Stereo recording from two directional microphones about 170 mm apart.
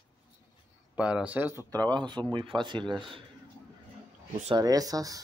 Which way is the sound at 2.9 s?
Centre (ahead or behind).